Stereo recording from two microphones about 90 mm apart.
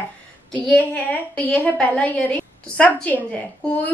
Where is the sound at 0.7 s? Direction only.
15° left (ahead or behind).